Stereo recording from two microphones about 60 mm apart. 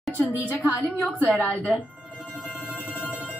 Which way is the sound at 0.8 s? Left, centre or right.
Left.